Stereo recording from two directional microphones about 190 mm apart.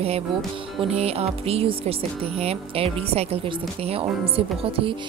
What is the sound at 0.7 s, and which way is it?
A woman's voice, 35° right (ahead or behind).